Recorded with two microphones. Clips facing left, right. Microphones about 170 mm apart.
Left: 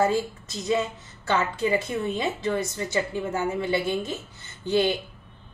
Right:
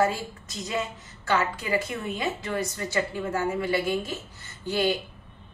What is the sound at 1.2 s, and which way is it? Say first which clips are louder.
A woman's voice: left 2 dB; 25° left (ahead or behind).